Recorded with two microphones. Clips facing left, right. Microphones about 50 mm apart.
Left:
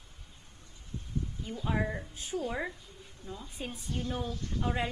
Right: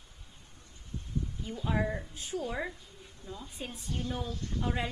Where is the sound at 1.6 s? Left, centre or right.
Centre.